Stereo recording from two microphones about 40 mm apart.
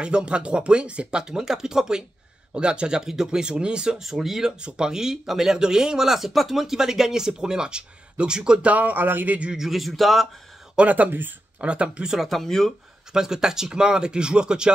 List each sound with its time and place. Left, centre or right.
0.0 s speech: right
1.2 s speech: centre
4.0 s speech: centre
8.6 s speech: right
9.7 s speech: centre
11.1 s speech: right
11.6 s speech: right
12.3 s speech: centre
13.1 s speech: centre